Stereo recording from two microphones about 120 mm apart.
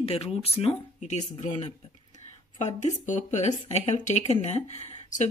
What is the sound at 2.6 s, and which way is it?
Speech, 90° left.